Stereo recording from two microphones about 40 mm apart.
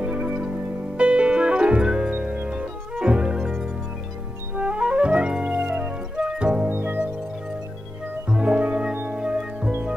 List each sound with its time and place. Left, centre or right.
0.0 s music: right
2.0 s music: right
2.5 s music: right
3.3 s music: centre
4.6 s music: right
5.7 s music: right
6.1 s music: right
6.7 s music: right
8.4 s music: right
8.9 s music: right
9.2 s music: right